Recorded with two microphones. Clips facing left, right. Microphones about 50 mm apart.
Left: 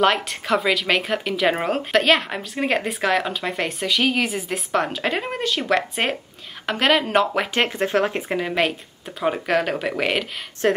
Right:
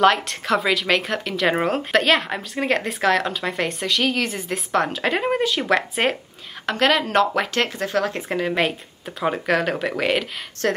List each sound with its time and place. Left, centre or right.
0.0 s speech: centre
7.6 s speech: left
8.2 s speech: centre
10.6 s speech: centre